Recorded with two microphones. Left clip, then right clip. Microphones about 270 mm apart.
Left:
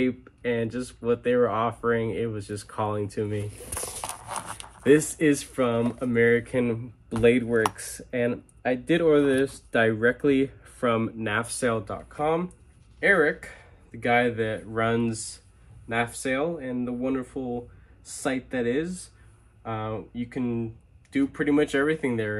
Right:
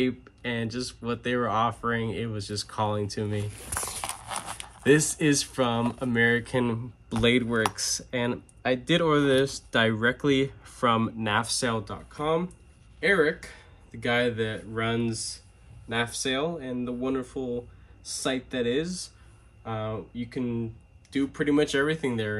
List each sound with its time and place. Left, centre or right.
0.0 s speech: centre
15.9 s speech: centre